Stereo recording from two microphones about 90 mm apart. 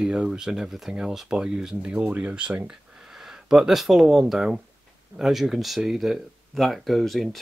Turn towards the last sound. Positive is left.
turn(degrees=0)  # may be behind; listen again after turning